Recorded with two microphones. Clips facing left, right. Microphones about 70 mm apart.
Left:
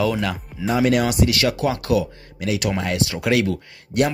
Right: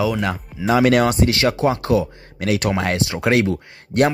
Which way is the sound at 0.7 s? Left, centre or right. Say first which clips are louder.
Right 3 dB; right.